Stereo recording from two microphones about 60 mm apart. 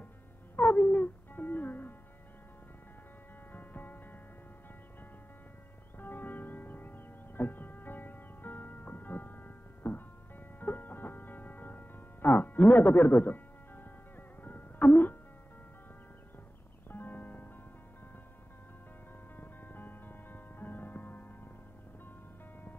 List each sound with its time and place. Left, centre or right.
0.6 s music: left
3.5 s music: left
5.9 s music: left
16.9 s music: left
19.3 s music: left